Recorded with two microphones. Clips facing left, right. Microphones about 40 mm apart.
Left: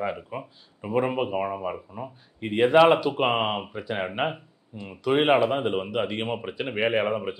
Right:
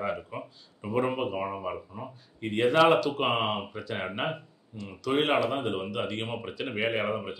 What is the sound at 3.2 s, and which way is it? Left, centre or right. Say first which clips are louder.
Speech: left 3 dB; centre.